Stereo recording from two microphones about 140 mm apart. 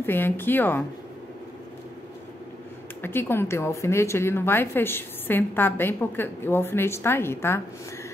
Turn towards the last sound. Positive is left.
turn(degrees=15)  # may be behind; listen again after turning